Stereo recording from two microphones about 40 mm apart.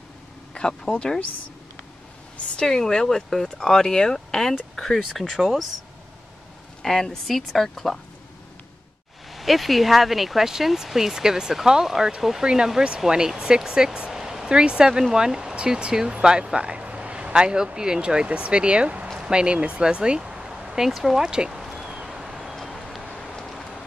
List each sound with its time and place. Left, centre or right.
0.9 s speech: centre
2.6 s speech: centre
6.8 s speech: centre
9.3 s speech: centre
13.6 s a sound: centre
14.1 s a sound: centre
14.5 s speech: right
18.2 s speech: right; by 21.2 s centre
21.2 s speech: centre
22.0 s a sound: centre